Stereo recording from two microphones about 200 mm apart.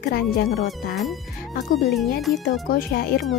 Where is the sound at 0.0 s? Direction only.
50° left (ahead or behind).